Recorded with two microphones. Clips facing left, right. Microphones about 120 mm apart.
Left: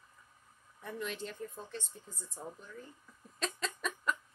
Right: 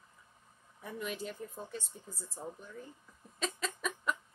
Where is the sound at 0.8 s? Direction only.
10° right (ahead or behind).